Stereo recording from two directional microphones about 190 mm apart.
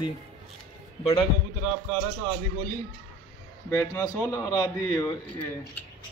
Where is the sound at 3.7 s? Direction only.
15° left (ahead or behind).